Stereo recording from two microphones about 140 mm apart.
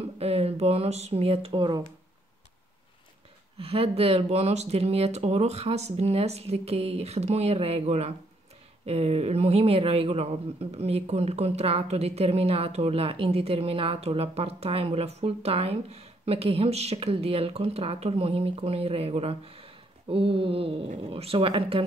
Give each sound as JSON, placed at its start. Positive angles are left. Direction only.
{"t": 0.2, "sound": "speech", "side_deg": -45}
{"t": 3.5, "sound": "speech", "side_deg": -40}